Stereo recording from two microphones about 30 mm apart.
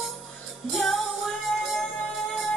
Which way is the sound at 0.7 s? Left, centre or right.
Centre.